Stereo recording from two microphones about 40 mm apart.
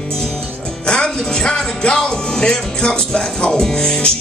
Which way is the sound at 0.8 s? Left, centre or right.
Left.